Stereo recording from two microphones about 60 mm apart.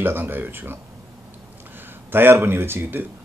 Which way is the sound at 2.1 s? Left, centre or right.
Right.